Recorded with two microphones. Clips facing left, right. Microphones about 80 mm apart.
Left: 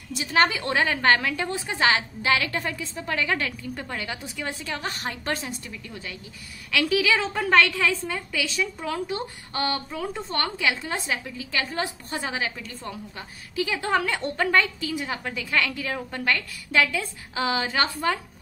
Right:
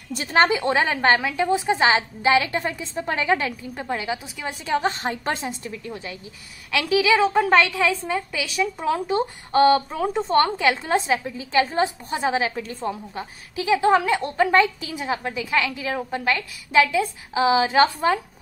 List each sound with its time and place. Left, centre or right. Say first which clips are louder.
0.1 s a woman's voice: right 3 dB; right
0.4 s a woman's voice: right 3 dB; right
4.6 s a woman's voice: right 8 dB; right
10.1 s a woman's voice: right 13 dB; right